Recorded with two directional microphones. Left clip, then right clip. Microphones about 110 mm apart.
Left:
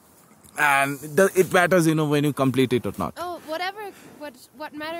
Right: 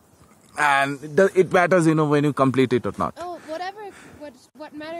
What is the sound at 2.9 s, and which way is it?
Speech, 20° left (ahead or behind).